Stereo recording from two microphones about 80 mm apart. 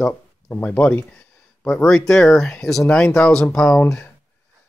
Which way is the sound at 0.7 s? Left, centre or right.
Left.